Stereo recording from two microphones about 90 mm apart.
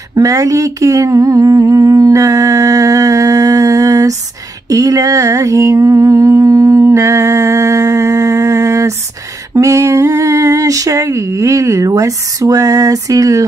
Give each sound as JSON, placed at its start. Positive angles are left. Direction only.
{"t": 0.1, "sound": "humming", "side_deg": -40}
{"t": 4.6, "sound": "music", "side_deg": -40}
{"t": 9.5, "sound": "a sound", "side_deg": -35}